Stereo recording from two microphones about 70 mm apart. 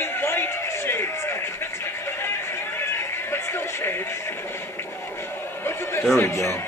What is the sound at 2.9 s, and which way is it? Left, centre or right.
Music, left.